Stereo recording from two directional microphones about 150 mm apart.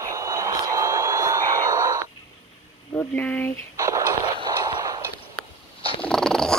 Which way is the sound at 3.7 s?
20° right (ahead or behind).